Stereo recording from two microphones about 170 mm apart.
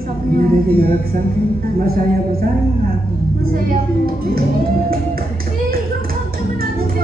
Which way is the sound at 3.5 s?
60° right (ahead or behind).